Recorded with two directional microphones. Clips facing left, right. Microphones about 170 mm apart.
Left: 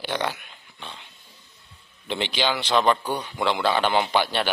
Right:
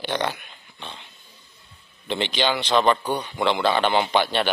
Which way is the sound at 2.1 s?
10° left (ahead or behind).